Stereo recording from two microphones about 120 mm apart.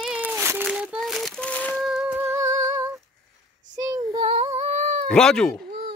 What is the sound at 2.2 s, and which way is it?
Humming, 25° right (ahead or behind).